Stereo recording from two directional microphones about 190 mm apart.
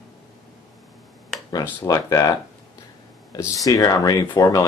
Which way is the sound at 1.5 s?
15° left (ahead or behind).